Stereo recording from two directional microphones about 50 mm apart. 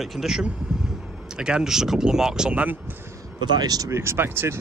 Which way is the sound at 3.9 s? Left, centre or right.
Right.